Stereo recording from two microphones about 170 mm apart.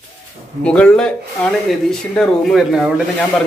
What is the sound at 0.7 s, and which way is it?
Speech, 5° left (ahead or behind).